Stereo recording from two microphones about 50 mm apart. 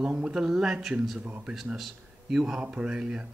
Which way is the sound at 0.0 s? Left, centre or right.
Centre.